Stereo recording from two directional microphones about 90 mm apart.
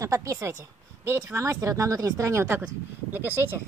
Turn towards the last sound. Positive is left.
turn(degrees=-20)  # may be behind; listen again after turning